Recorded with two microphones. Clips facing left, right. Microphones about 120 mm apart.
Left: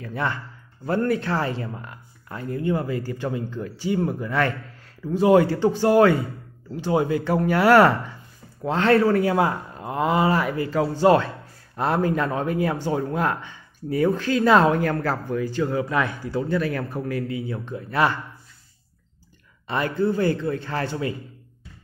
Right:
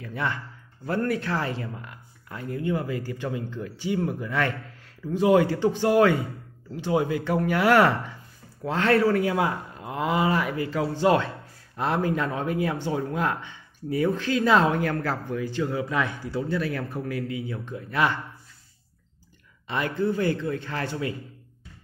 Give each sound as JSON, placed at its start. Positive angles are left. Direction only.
{"t": 0.0, "sound": "speech", "side_deg": 40}
{"t": 0.8, "sound": "speech", "side_deg": 30}
{"t": 8.6, "sound": "speech", "side_deg": 30}
{"t": 19.7, "sound": "speech", "side_deg": 35}